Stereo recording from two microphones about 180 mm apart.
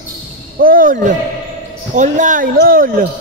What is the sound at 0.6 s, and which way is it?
Speech, 50° right (ahead or behind).